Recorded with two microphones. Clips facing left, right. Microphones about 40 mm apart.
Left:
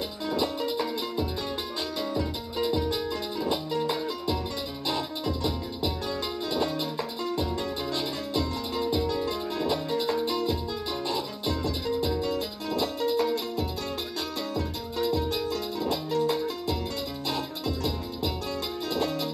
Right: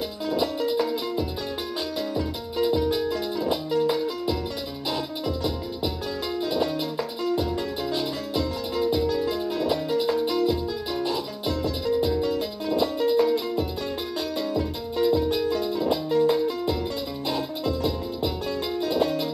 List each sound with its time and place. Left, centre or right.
0.3 s music: centre
4.8 s music: centre